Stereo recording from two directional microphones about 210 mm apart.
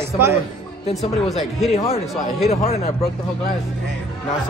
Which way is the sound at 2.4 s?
30° left (ahead or behind).